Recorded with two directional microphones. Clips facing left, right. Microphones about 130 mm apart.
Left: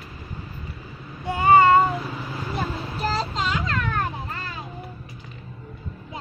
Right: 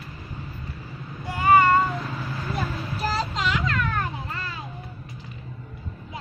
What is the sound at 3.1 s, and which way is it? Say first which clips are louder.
Child singing: right 1 dB; 30° left (ahead or behind).